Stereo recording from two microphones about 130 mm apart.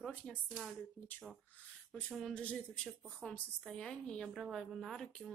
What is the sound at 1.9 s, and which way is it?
A woman's voice, centre (ahead or behind).